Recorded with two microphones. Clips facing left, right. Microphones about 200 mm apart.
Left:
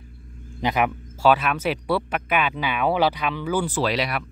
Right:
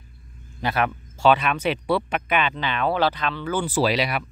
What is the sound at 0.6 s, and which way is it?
Speech, 15° left (ahead or behind).